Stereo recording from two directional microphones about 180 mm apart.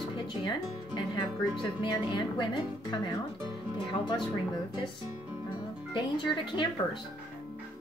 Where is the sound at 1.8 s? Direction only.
25° left (ahead or behind).